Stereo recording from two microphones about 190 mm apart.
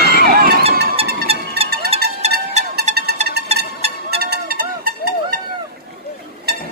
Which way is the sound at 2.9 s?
40° right (ahead or behind).